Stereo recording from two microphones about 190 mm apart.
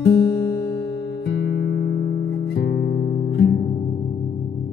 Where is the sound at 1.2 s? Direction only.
60° left (ahead or behind).